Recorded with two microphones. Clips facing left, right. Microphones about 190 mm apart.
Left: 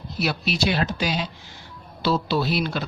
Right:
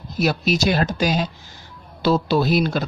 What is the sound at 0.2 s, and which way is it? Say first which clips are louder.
A man's voice: right 5 dB; 45° right (ahead or behind).